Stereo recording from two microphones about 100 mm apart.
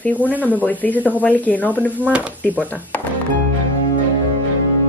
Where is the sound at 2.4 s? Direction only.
15° left (ahead or behind).